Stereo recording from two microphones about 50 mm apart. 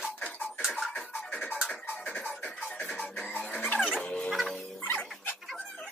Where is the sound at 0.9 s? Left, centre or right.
Centre.